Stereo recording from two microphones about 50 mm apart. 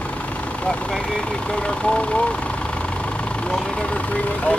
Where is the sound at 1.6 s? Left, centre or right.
Left.